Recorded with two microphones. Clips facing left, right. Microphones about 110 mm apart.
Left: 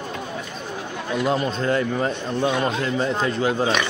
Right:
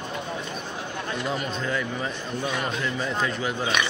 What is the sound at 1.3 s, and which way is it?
Speech, 45° left (ahead or behind).